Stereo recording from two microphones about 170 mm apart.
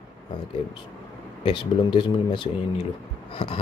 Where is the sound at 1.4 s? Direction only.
30° left (ahead or behind).